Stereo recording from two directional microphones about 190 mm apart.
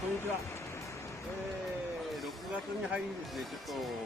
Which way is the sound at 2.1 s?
Centre (ahead or behind).